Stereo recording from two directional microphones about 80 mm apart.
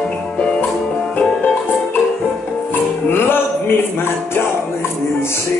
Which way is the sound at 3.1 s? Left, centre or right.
Left.